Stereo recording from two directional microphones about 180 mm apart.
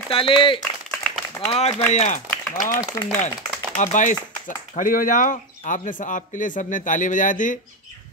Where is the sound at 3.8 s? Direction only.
45° left (ahead or behind).